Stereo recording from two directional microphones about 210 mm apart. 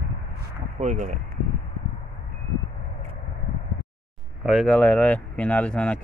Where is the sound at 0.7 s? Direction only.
35° right (ahead or behind).